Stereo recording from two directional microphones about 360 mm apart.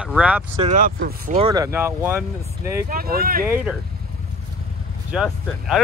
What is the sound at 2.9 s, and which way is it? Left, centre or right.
Speech, right.